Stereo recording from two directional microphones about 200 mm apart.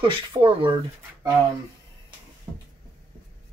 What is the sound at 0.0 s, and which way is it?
Speech, 25° right (ahead or behind).